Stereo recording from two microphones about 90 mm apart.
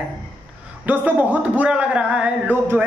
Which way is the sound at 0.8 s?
20° right (ahead or behind).